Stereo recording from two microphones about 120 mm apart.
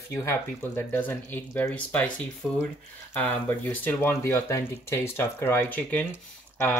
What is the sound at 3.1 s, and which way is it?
Speech, 15° left (ahead or behind).